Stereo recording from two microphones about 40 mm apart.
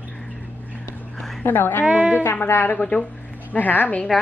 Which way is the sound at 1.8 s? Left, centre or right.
Right.